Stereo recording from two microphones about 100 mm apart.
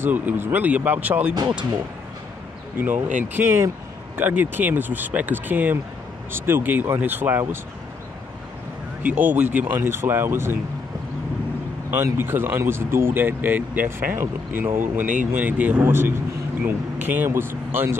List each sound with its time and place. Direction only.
0.0 s speech: 15° right (ahead or behind)
2.8 s speech: 20° right (ahead or behind)
9.0 s speech: 15° right (ahead or behind)
11.9 s speech: 20° right (ahead or behind)